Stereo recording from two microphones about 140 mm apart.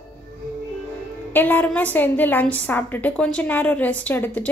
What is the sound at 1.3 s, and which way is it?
A woman's voice, 15° left (ahead or behind).